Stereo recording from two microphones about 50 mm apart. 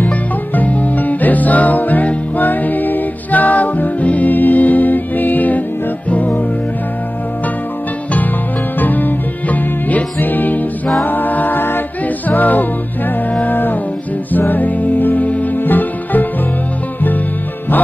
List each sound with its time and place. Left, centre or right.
0.6 s music: left
8.7 s music: left